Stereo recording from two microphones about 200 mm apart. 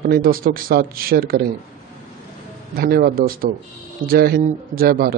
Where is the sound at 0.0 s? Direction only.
45° right (ahead or behind).